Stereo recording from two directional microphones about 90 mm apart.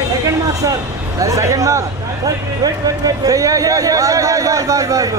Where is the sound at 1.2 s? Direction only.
35° right (ahead or behind).